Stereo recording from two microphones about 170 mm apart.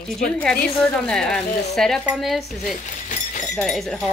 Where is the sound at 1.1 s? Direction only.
5° left (ahead or behind).